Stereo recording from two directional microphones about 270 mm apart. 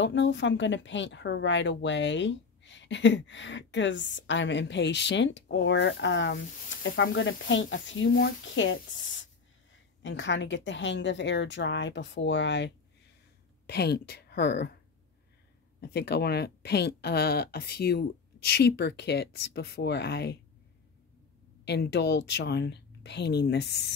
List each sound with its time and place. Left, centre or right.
0.0 s a woman's voice: left
10.0 s speech: left
15.8 s speech: left
21.6 s speech: left